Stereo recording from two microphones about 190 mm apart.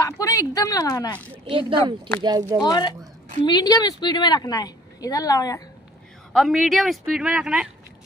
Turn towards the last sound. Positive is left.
turn(degrees=-5)  # may be behind; listen again after turning